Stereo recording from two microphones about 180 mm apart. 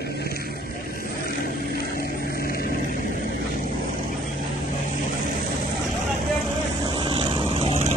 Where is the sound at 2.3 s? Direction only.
55° left (ahead or behind).